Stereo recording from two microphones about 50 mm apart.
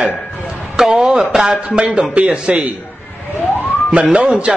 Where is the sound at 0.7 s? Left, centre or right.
Centre.